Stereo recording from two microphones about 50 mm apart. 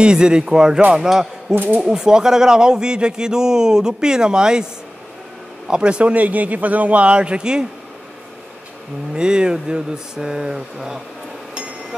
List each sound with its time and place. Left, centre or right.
0.0 s a man's voice: centre
1.5 s speech: right
1.8 s a man's voice: centre
5.7 s a man's voice: centre
9.1 s a man's voice: centre